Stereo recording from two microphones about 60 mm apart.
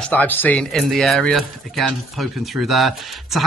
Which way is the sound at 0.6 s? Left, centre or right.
Centre.